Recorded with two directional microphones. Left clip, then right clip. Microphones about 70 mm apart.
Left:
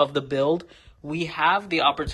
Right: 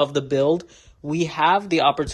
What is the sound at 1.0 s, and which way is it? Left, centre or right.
Speech, right.